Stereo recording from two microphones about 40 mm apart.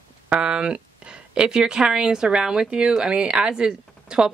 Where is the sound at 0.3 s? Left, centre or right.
Right.